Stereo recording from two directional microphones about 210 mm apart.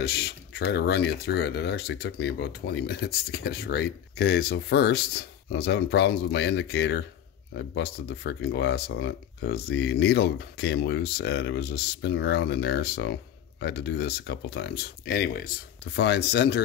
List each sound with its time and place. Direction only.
0.0 s speech: 50° left (ahead or behind)